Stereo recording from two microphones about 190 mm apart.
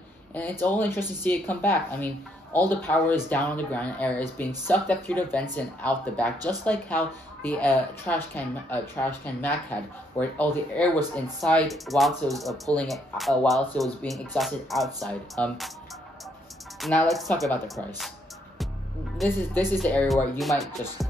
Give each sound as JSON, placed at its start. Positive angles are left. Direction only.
{"t": 0.3, "sound": "speech", "side_deg": 10}
{"t": 6.3, "sound": "speech", "side_deg": -20}
{"t": 6.6, "sound": "speech", "side_deg": 10}
{"t": 16.8, "sound": "speech", "side_deg": 5}
{"t": 19.2, "sound": "speech", "side_deg": 10}